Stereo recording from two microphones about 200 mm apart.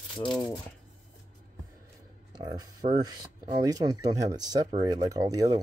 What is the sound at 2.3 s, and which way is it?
Speech, 20° right (ahead or behind).